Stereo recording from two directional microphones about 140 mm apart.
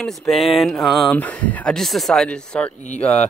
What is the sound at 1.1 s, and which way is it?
Speech, 10° left (ahead or behind).